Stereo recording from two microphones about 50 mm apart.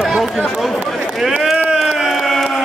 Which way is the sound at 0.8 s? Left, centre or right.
Centre.